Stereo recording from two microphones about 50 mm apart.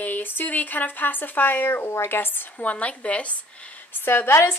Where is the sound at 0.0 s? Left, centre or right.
Left.